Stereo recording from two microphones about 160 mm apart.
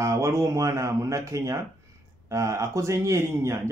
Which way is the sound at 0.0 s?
20° right (ahead or behind).